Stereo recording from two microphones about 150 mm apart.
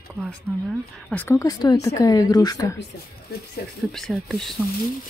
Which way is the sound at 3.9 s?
Centre (ahead or behind).